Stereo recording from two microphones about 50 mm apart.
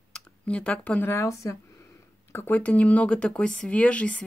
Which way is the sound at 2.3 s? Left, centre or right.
Left.